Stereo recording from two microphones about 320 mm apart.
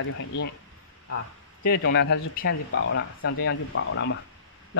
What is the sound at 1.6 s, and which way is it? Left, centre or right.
Speech, left.